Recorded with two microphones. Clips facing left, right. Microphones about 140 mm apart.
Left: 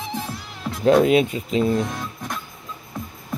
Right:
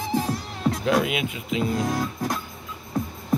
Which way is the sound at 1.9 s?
30° right (ahead or behind).